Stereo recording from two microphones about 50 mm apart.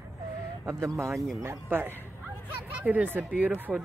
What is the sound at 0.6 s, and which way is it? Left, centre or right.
Speech, right.